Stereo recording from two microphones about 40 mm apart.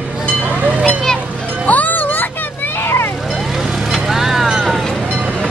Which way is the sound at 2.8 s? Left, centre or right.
Left.